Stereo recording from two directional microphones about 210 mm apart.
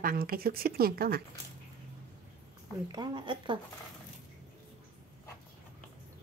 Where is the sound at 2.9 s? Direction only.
20° right (ahead or behind).